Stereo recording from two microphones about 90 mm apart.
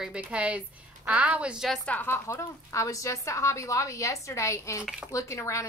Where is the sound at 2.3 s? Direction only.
35° left (ahead or behind).